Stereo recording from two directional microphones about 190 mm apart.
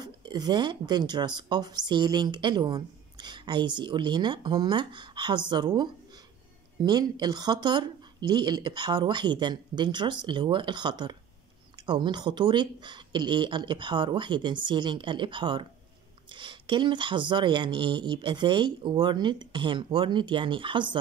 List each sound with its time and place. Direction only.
0.0 s speech: 20° right (ahead or behind)